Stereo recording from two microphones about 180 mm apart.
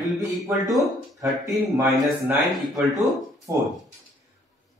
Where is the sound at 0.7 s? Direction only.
Centre (ahead or behind).